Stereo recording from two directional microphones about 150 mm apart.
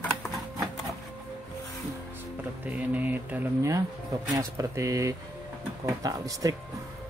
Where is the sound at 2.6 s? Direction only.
10° right (ahead or behind).